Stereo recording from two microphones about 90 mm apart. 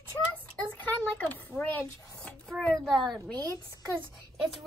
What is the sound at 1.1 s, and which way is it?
Speech, 20° left (ahead or behind).